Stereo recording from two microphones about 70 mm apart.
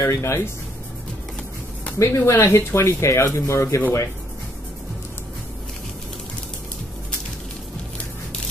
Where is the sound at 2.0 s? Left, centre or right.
Left.